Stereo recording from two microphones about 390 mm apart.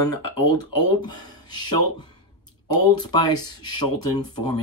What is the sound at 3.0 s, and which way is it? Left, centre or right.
Speech, centre.